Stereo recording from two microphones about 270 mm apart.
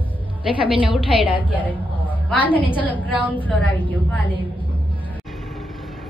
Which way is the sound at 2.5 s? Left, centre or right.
Centre.